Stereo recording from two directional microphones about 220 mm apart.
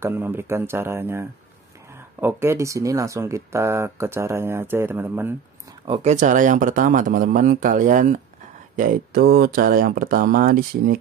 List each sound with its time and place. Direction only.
0.0 s speech: 10° right (ahead or behind)
5.9 s speech: 30° right (ahead or behind)